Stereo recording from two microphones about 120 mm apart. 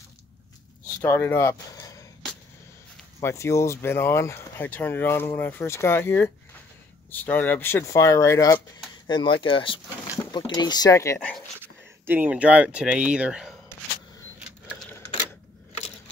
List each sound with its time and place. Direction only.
1.0 s speech: 20° left (ahead or behind)
3.2 s speech: 25° left (ahead or behind)
9.0 s speech: 40° left (ahead or behind)
12.1 s speech: 15° right (ahead or behind)